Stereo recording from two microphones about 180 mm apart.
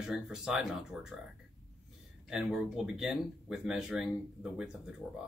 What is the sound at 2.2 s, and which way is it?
Speech, 5° right (ahead or behind).